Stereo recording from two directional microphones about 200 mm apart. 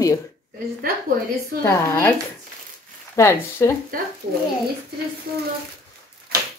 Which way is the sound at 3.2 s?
15° left (ahead or behind).